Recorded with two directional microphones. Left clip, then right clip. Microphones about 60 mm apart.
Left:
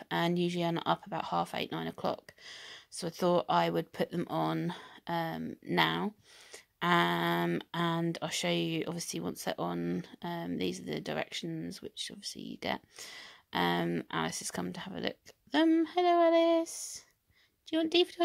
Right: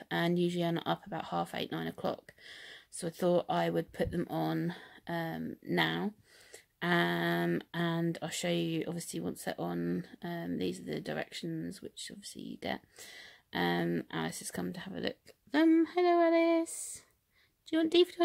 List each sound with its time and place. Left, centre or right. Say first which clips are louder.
0.0 s a sound: left 1 dB; left
0.4 s speech: even; centre
6.8 s speech: left 3 dB; left
9.8 s speech: even; centre
10.2 s speech: left 2 dB; left
15.8 s speech: left 1 dB; centre
17.6 s a woman's voice: right 1 dB; centre